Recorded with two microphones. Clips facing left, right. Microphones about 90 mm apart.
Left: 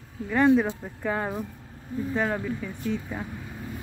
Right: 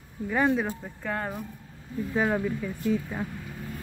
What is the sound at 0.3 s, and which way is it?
Speech, 5° right (ahead or behind).